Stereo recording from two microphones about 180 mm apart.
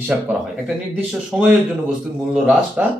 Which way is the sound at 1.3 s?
5° right (ahead or behind).